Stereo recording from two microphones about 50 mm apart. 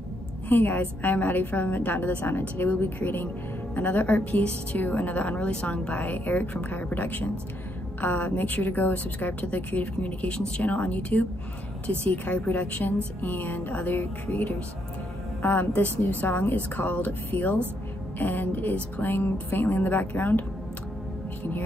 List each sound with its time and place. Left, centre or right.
0.5 s a woman's voice: left
10.2 s a woman's voice: centre; by 21.6 s left